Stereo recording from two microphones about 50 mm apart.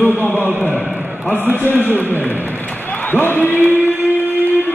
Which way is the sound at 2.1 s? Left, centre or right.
Left.